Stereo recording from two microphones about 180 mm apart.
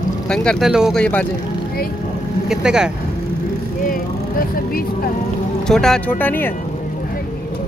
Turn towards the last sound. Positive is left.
turn(degrees=10)  # may be behind; listen again after turning